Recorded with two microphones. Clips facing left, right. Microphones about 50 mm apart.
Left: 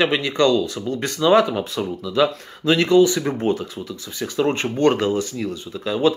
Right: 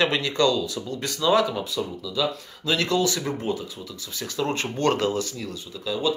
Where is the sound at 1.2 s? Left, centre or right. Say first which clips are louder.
Left 5 dB; left.